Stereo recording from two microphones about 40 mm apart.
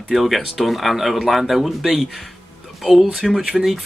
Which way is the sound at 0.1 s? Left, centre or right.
Centre.